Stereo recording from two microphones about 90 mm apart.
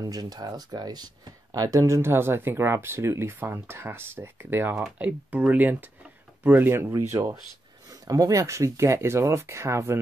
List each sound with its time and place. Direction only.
0.0 s speech: 45° right (ahead or behind); by 6.9 s 25° right (ahead or behind)
7.9 s speech: 40° right (ahead or behind)